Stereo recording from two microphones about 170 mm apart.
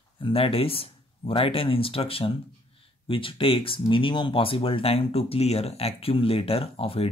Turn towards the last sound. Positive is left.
turn(degrees=35)  # may be behind; listen again after turning